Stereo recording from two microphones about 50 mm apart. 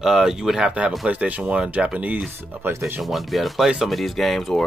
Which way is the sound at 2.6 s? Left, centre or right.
Right.